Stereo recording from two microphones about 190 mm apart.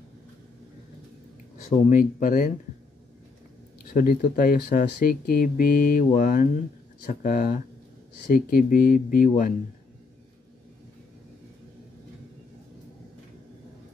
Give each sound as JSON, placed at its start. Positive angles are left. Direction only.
{"t": 1.9, "sound": "speech", "side_deg": 45}
{"t": 3.9, "sound": "speech", "side_deg": 45}